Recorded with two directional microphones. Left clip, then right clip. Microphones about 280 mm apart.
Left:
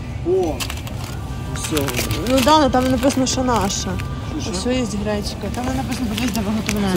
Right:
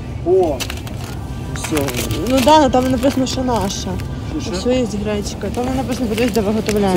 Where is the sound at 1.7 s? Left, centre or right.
Centre.